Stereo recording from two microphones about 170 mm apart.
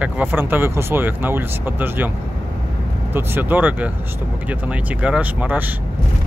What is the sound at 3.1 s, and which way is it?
Speech, 10° right (ahead or behind).